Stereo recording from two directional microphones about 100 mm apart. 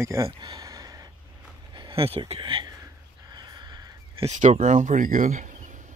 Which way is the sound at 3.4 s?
45° right (ahead or behind).